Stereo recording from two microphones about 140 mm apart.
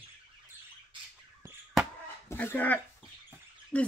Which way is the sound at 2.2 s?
15° left (ahead or behind).